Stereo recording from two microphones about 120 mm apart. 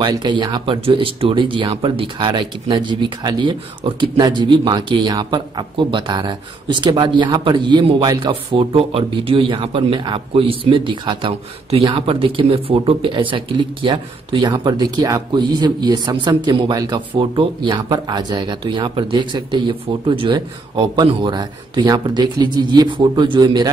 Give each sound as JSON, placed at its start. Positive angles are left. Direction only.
{"t": 0.0, "sound": "speech", "side_deg": -35}
{"t": 17.1, "sound": "speech", "side_deg": -45}